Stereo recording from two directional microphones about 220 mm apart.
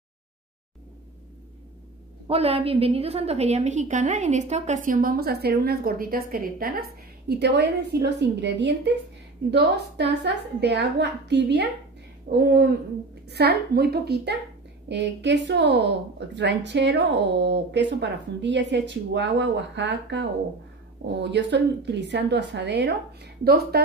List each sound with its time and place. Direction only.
2.2 s a woman's voice: 25° right (ahead or behind); by 23.8 s 45° right (ahead or behind)